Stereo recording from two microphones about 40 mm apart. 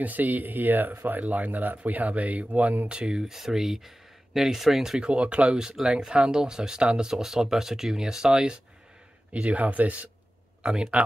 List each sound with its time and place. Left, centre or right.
0.0 s speech: right
2.9 s speech: right
3.3 s speech: centre
5.0 s speech: right
5.6 s speech: centre
9.3 s speech: right
10.6 s speech: right